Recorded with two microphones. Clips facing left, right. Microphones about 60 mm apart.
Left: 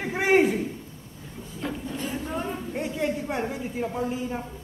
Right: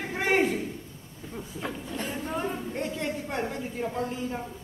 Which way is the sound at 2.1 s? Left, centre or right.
Centre.